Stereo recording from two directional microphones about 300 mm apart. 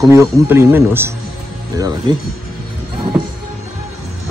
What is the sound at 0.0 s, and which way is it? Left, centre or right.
A man's voice, centre.